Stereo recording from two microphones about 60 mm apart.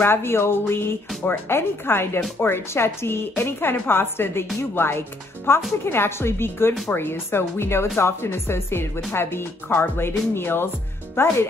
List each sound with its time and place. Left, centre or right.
0.0 s a woman's voice: left